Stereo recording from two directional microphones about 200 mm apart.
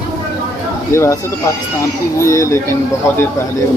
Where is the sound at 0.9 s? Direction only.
15° left (ahead or behind).